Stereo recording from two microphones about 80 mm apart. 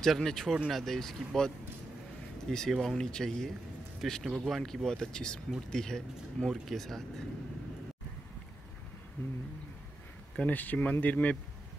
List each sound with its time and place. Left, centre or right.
0.0 s speech: centre
2.5 s speech: centre
10.3 s speech: centre